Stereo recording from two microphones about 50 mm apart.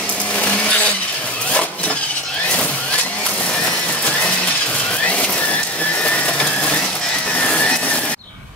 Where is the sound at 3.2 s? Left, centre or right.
Left.